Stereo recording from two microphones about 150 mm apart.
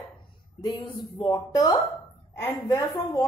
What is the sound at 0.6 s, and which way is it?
A woman's voice, 30° left (ahead or behind).